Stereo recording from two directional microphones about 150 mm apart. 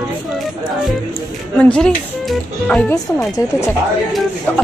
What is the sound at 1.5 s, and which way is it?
Speech, 10° left (ahead or behind).